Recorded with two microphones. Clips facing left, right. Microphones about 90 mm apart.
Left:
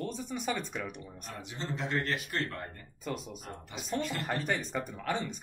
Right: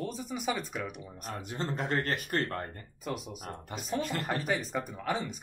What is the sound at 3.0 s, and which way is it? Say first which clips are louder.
Speech: right 1 dB; 5° right (ahead or behind).